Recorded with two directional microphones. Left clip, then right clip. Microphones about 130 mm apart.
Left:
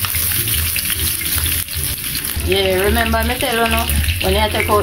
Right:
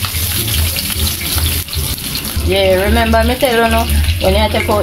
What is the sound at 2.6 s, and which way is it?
Speech, 60° right (ahead or behind).